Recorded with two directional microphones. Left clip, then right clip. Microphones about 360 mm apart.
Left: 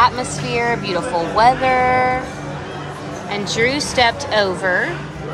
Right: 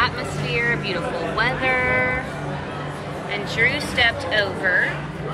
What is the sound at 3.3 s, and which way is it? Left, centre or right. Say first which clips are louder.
Speech: left 2 dB; centre.